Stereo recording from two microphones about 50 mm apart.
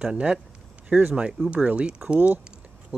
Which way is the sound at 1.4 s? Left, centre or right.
Right.